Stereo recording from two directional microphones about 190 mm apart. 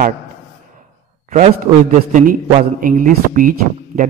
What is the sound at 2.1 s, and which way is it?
A man's voice, 45° right (ahead or behind).